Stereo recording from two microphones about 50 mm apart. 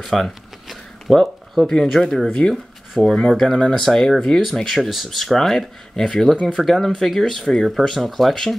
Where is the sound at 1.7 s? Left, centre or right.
Centre.